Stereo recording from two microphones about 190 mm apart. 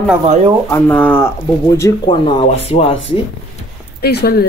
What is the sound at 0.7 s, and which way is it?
Speech, 10° left (ahead or behind).